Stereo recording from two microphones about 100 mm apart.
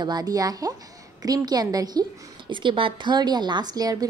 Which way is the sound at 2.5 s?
55° right (ahead or behind).